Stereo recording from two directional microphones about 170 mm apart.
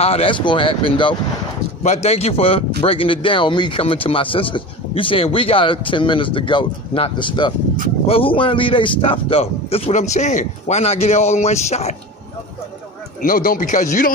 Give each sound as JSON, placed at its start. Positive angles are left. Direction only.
{"t": 0.0, "sound": "speech", "side_deg": 35}
{"t": 13.2, "sound": "speech", "side_deg": 55}